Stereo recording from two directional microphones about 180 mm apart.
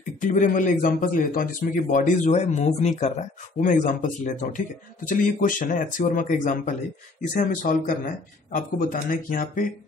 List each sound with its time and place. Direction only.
0.2 s a man's voice: 45° left (ahead or behind)